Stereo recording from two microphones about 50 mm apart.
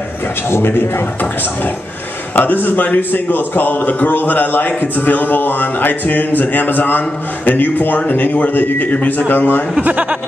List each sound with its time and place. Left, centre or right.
0.5 s a man's voice: left
2.3 s a man's voice: left
9.3 s a man's voice: left
9.8 s speech: right